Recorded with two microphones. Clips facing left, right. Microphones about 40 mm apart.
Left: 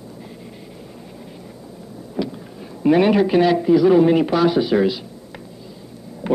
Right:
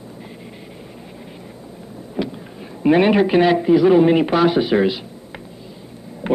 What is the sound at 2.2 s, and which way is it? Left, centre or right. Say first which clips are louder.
Vehicle: even; right.